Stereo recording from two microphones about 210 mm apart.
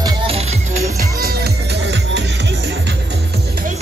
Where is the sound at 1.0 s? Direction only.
45° right (ahead or behind).